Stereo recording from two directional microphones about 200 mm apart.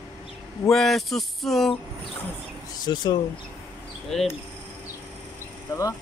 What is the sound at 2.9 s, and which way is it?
Speech, 20° left (ahead or behind).